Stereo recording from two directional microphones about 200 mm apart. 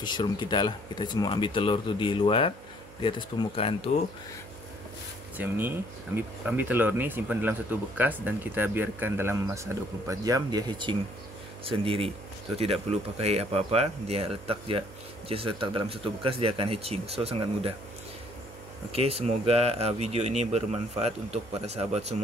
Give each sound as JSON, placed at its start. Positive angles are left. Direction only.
{"t": 0.0, "sound": "speech", "side_deg": 20}
{"t": 5.4, "sound": "speech", "side_deg": -10}
{"t": 18.9, "sound": "speech", "side_deg": -30}